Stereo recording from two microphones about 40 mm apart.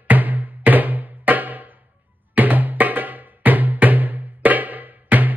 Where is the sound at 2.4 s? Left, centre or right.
Right.